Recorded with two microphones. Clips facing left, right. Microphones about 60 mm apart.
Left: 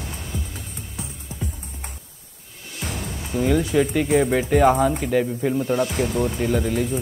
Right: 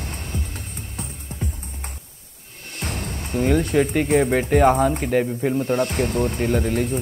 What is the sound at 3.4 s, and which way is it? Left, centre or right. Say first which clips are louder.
Speech: right 1 dB; right.